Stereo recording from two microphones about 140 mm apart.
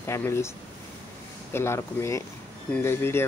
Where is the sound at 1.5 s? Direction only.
15° left (ahead or behind).